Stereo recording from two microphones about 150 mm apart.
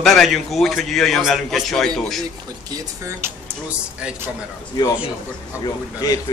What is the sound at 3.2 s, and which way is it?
Speech, 15° right (ahead or behind).